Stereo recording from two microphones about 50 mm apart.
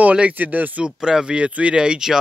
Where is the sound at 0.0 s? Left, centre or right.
Right.